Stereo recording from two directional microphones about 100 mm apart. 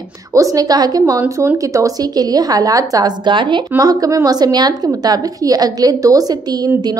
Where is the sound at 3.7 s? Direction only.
40° right (ahead or behind).